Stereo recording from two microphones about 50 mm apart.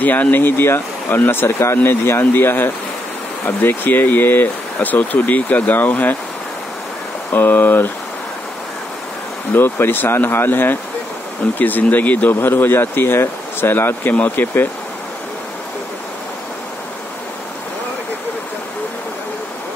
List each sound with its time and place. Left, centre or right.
0.0 s speech: left
7.2 s speech: left
9.5 s speech: left
12.4 s speech: left